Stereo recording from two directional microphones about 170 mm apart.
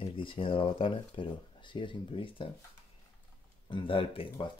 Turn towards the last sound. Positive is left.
turn(degrees=30)  # may be behind; listen again after turning